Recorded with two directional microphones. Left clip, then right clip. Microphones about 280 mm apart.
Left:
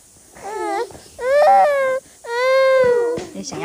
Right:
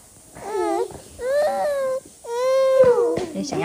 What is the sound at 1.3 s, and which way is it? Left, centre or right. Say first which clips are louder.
Baby cry: left 9 dB; centre.